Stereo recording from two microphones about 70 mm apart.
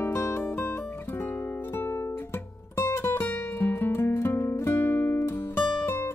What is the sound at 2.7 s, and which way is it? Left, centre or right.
Music, left.